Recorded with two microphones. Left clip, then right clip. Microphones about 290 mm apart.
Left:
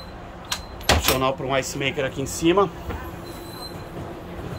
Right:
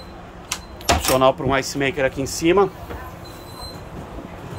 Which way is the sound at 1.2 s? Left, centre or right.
Centre.